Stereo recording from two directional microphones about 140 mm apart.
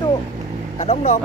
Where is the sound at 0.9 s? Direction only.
55° left (ahead or behind).